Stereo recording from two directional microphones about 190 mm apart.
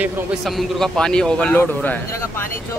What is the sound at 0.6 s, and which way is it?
A man's voice, centre (ahead or behind).